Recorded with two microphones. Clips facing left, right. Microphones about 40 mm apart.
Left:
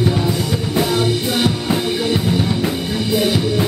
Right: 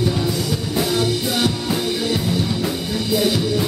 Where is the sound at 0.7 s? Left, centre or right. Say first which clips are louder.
Left 3 dB; left.